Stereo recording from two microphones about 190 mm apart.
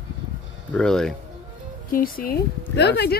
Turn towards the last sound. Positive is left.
turn(degrees=60)  # may be behind; listen again after turning